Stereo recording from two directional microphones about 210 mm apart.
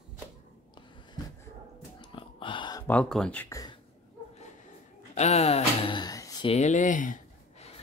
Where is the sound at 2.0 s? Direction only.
25° left (ahead or behind).